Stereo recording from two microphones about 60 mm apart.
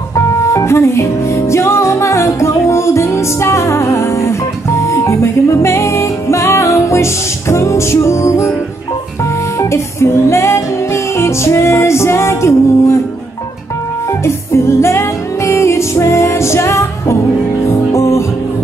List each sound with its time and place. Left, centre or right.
0.1 s music: left
9.6 s music: left
14.2 s music: left